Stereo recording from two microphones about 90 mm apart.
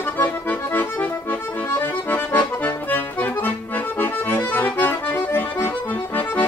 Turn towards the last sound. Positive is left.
turn(degrees=25)  # may be behind; listen again after turning